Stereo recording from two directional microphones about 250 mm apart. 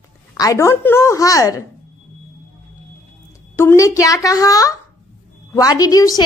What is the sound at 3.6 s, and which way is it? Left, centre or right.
A woman's voice, centre.